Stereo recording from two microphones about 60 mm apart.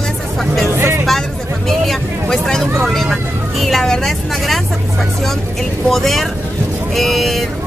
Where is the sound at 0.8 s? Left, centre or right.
Right.